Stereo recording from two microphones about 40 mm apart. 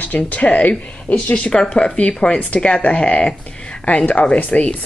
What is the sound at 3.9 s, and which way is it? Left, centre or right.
Speech, left.